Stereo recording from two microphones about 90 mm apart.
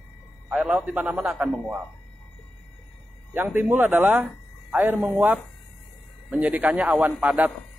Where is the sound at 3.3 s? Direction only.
20° right (ahead or behind).